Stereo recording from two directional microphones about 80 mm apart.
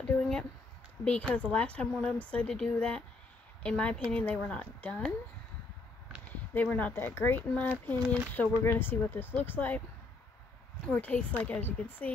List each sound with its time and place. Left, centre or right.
1.0 s a woman's voice: left
1.3 s speech: centre
6.5 s speech: left
10.9 s speech: centre